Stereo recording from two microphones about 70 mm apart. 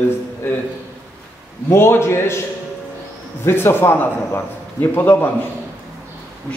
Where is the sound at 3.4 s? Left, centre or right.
Left.